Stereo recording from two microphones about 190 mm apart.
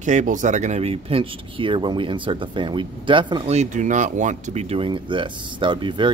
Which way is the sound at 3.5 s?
40° right (ahead or behind).